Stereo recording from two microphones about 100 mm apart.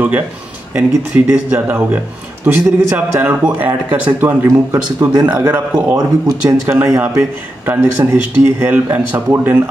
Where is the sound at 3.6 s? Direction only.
20° right (ahead or behind).